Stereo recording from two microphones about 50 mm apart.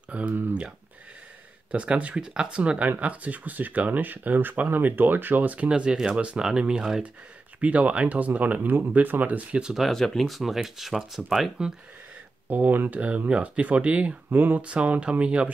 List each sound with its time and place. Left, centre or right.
0.3 s speech: right
1.7 s speech: right
5.7 s speech: centre
9.8 s speech: centre
12.4 s speech: right
14.3 s speech: right
14.6 s speech: right